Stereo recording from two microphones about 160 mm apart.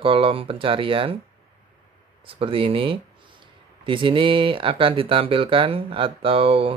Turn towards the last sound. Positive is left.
turn(degrees=-35)  # may be behind; listen again after turning